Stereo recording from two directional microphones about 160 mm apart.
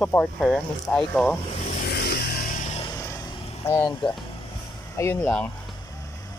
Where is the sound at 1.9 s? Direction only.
85° left.